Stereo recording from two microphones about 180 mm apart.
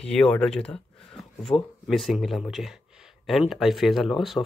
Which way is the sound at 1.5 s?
15° left (ahead or behind).